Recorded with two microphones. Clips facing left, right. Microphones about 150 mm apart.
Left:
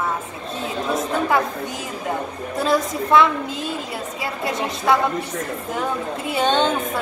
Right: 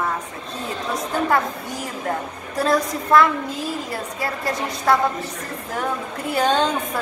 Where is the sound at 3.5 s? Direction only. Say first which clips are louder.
Even; 25° left (ahead or behind).